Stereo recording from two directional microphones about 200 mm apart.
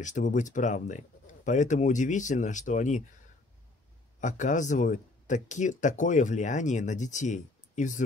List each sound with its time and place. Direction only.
0.0 s speech: 40° left (ahead or behind)
4.2 s speech: 40° left (ahead or behind)